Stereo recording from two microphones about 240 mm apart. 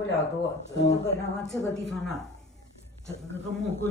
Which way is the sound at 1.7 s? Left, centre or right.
Centre.